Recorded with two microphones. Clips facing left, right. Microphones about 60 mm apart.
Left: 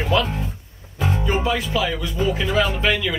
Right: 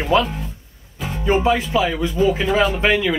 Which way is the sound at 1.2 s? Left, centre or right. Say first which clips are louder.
Right 7 dB; right.